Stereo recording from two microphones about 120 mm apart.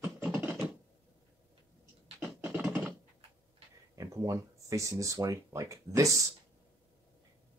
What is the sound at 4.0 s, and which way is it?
Speech, 30° right (ahead or behind).